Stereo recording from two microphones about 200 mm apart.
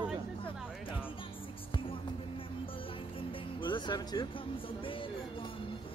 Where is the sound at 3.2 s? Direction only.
25° left (ahead or behind).